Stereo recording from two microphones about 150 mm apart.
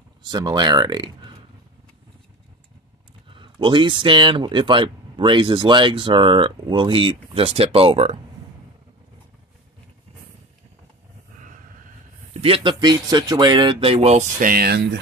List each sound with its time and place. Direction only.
0.3 s speech: 25° right (ahead or behind)
3.3 s speech: 35° right (ahead or behind)
12.4 s speech: 35° right (ahead or behind)
14.4 s speech: 80° right